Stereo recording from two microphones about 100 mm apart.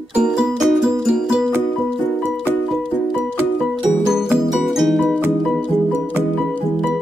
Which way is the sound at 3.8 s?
5° right (ahead or behind).